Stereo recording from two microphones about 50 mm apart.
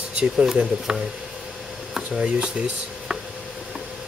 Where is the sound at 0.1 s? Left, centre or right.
Centre.